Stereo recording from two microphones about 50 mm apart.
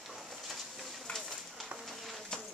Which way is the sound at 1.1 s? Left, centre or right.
Centre.